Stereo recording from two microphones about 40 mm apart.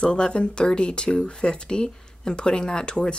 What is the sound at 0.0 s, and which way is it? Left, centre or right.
Speech, left.